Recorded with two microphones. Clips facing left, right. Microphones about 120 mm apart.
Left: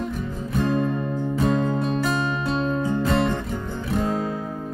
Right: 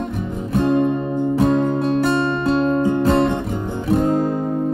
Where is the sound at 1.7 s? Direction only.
Centre (ahead or behind).